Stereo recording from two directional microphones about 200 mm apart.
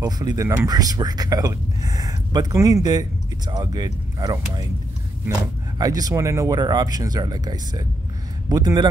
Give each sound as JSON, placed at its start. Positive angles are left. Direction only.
{"t": 0.0, "sound": "speech", "side_deg": -20}
{"t": 5.8, "sound": "speech", "side_deg": -20}